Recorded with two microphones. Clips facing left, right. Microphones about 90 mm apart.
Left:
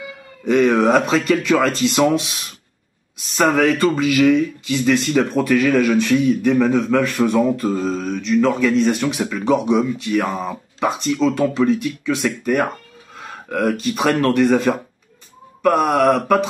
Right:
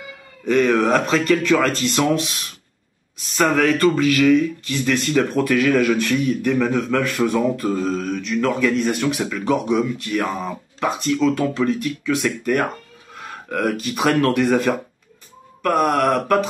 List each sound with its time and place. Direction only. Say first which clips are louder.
0.5 s speech: left 2 dB; 5° left (ahead or behind)
3.4 s speech: left 1 dB; 5° left (ahead or behind)